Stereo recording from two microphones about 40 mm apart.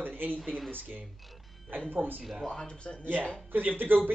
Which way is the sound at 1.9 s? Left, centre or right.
Right.